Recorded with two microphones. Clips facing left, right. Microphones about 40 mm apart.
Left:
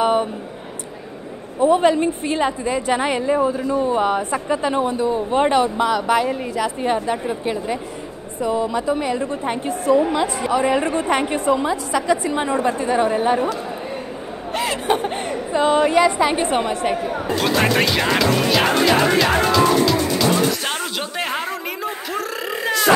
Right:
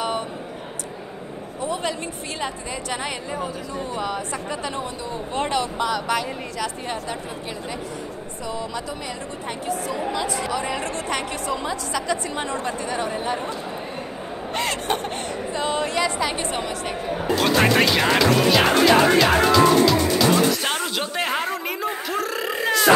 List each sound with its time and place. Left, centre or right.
0.0 s a sound: left
1.6 s speech: left
3.3 s speech: left
3.8 s a woman's voice: left
14.5 s speech: centre
15.0 s a sound: centre
15.7 s a woman's voice: left
17.2 s speech: centre
20.6 s a sound: centre